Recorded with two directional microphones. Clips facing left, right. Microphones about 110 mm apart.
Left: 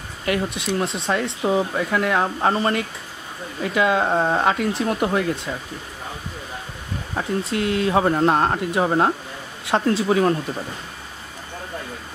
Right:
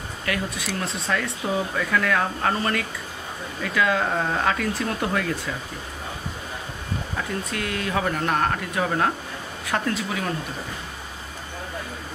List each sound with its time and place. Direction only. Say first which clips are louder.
0.2 s speech: left 5 dB; 25° left (ahead or behind)
7.2 s speech: left 7 dB; 25° left (ahead or behind)